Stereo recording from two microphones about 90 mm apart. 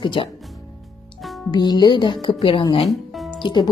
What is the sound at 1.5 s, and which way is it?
Speech, 50° left (ahead or behind).